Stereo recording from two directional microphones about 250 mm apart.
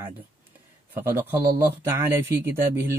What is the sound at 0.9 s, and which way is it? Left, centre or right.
Speech, centre.